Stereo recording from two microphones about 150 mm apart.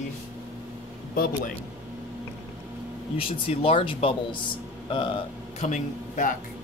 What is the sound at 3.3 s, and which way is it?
Speech, 40° left (ahead or behind).